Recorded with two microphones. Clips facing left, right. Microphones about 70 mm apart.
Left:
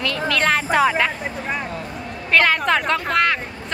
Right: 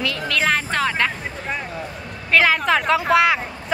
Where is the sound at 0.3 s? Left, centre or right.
Centre.